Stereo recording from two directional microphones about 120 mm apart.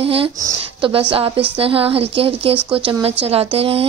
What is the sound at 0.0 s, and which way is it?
A woman's voice, 50° right (ahead or behind).